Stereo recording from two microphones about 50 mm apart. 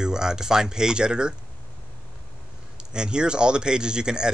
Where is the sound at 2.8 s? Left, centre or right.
Centre.